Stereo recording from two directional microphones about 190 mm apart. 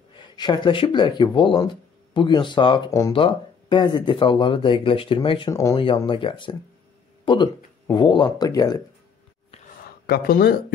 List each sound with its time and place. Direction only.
0.1 s speech: 25° left (ahead or behind)
5.8 s speech: 25° left (ahead or behind)
10.0 s speech: 50° left (ahead or behind)